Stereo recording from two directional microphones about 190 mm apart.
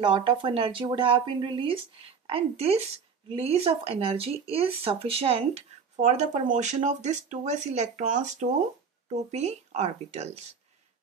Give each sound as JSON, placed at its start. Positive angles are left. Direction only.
{"t": 0.0, "sound": "speech", "side_deg": -25}